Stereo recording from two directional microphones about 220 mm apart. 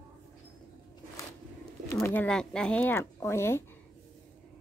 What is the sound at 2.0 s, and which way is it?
Speech, 5° left (ahead or behind).